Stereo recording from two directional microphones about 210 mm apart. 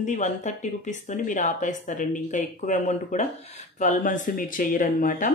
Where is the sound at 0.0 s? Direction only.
35° left (ahead or behind).